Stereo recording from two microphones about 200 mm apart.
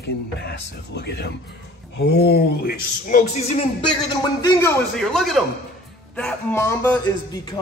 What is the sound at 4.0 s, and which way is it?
Speech, 20° left (ahead or behind).